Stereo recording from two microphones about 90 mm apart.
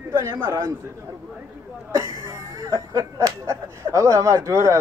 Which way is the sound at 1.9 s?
35° right (ahead or behind).